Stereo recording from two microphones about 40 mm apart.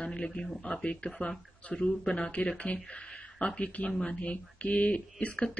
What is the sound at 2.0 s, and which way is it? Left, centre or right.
Speech, left.